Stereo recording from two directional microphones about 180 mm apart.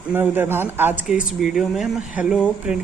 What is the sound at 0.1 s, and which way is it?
A man's voice, 10° right (ahead or behind).